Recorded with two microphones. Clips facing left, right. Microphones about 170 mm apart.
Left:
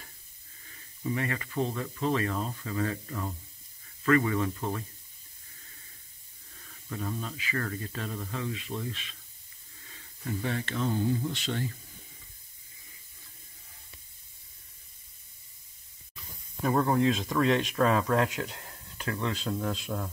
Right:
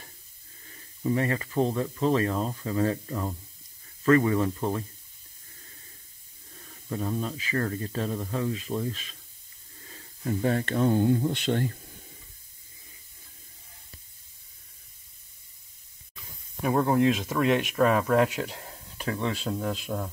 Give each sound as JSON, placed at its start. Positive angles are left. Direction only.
{"t": 0.7, "sound": "speech", "side_deg": -35}
{"t": 6.6, "sound": "snake", "side_deg": -30}
{"t": 7.2, "sound": "speech", "side_deg": -40}
{"t": 16.6, "sound": "speech", "side_deg": -10}